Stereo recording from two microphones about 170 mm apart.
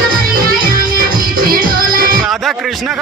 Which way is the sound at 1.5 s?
55° right (ahead or behind).